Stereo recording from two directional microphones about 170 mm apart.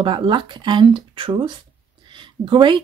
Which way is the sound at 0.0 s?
30° right (ahead or behind).